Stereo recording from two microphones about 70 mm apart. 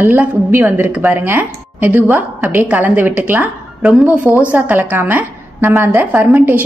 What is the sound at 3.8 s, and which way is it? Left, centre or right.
A woman's voice, centre.